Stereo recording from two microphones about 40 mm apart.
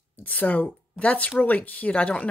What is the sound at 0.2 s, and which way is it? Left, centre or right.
Speech, left.